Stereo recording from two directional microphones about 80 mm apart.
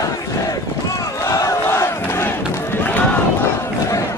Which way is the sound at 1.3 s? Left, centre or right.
Left.